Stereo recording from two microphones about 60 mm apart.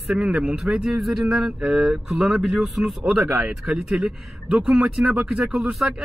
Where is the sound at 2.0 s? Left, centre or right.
Centre.